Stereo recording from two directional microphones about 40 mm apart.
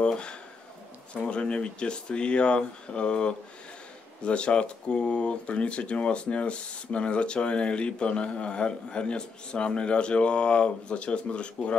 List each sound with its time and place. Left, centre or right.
0.0 s speech: left